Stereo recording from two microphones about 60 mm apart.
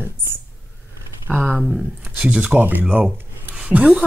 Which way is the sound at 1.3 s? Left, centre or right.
Right.